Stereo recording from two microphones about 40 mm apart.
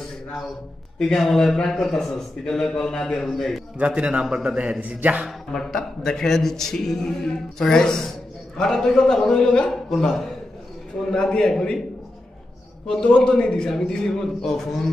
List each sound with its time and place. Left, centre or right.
0.9 s a man's voice: centre
3.7 s a man's voice: right
4.7 s a man's voice: right
5.5 s a man's voice: centre
9.7 s a man's voice: centre
11.1 s a man's voice: centre
13.0 s a man's voice: left; by 14.9 s centre